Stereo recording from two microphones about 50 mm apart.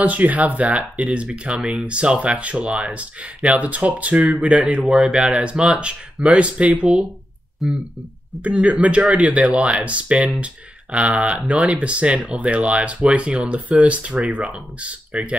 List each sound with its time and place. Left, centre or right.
0.0 s speech: right
7.6 s speech: centre
8.5 s speech: right